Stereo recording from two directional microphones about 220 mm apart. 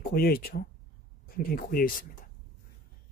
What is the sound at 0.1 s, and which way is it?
Speech, 45° left (ahead or behind).